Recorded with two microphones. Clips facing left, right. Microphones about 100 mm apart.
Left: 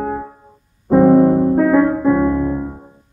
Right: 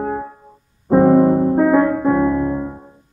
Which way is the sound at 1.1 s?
5° right (ahead or behind).